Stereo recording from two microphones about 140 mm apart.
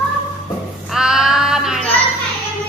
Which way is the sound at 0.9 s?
5° right (ahead or behind).